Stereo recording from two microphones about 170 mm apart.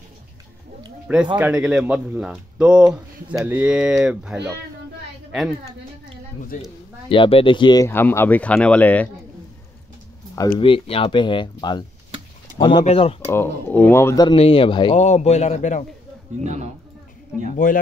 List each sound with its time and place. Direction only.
1.1 s speech: 10° right (ahead or behind)
6.5 s speech: 50° left (ahead or behind)
7.1 s speech: 30° left (ahead or behind)
7.9 s speech: 15° left (ahead or behind)
10.6 s a man's voice: 35° left (ahead or behind)
13.3 s speech: 15° left (ahead or behind)
14.2 s a man's voice: 35° left (ahead or behind)
15.0 s a man's voice: 40° left (ahead or behind)
16.4 s a man's voice: 40° right (ahead or behind)
17.6 s speech: 55° left (ahead or behind)